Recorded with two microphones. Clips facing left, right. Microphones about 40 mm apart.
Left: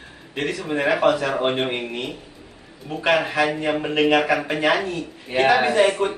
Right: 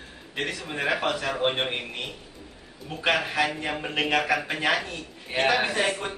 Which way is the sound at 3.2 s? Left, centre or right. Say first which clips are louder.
Left 5 dB; centre.